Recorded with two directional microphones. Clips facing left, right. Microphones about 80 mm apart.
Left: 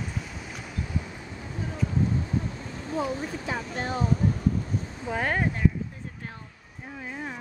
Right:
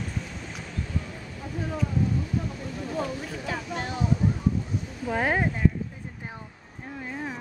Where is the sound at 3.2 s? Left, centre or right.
Left.